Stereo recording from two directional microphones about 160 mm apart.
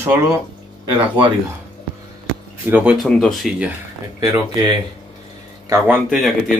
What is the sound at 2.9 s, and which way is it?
Speech, centre (ahead or behind).